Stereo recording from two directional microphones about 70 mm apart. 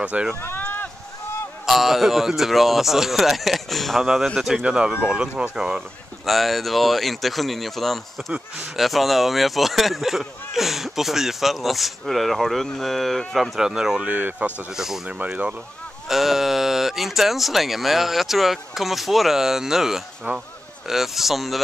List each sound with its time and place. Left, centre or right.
0.0 s speech: centre
0.4 s run: left
1.7 s speech: centre
14.0 s speech: right
14.7 s speech: centre
15.0 s speech: right
16.1 s speech: centre